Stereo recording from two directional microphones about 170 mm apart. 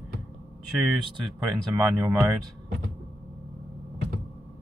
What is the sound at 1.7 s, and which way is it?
Speech, 15° right (ahead or behind).